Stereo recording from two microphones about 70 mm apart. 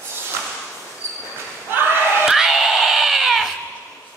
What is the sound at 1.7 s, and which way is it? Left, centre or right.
Battle cry, right.